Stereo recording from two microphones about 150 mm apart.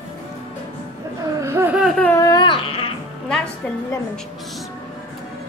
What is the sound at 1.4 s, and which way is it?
Laughter, 15° right (ahead or behind).